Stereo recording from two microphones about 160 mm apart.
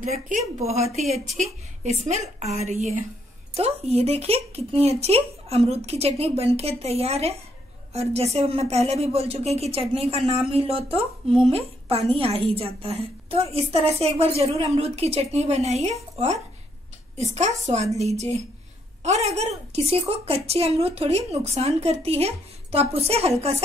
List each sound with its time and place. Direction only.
0.1 s a woman's voice: 40° right (ahead or behind)